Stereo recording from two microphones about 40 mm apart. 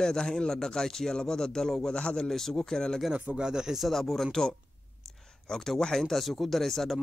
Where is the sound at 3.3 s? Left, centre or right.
Centre.